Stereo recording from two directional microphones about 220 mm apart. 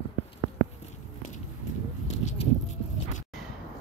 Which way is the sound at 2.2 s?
30° left (ahead or behind).